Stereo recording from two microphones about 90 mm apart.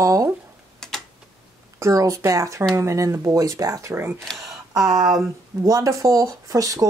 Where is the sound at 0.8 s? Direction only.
5° left (ahead or behind).